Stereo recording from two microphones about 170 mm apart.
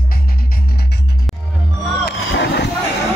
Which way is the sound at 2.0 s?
85° left.